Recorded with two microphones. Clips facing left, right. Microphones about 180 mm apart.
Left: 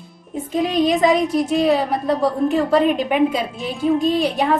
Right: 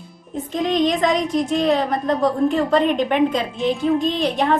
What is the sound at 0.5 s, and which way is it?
Speech, 5° left (ahead or behind).